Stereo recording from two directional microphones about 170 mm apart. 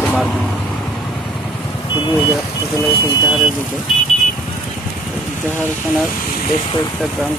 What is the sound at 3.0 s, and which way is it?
Speech, 20° left (ahead or behind).